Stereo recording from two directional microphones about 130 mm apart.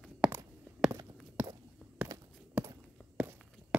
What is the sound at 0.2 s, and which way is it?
Walk, 5° right (ahead or behind).